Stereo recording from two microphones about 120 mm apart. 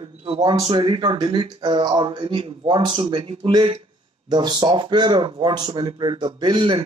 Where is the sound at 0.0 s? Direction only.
50° right (ahead or behind).